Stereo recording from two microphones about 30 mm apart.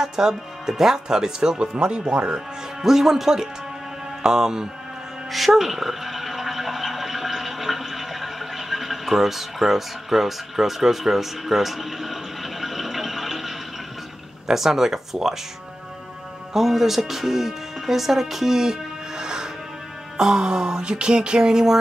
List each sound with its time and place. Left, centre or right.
0.0 s speech: centre
1.6 s speech: right
2.8 s speech: centre
5.5 s a sound: centre
14.5 s speech: centre
16.5 s speech: centre; by 21.4 s right
21.4 s speech: right